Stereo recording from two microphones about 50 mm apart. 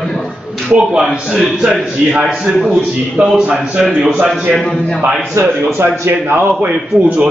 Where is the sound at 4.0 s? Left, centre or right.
Centre.